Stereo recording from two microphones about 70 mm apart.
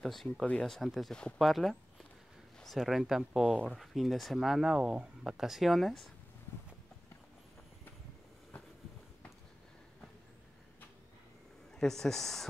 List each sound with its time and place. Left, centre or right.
0.0 s speech: centre
11.7 s speech: centre